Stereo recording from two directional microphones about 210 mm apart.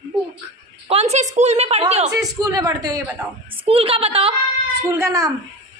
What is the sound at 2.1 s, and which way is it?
A woman's voice, 15° right (ahead or behind).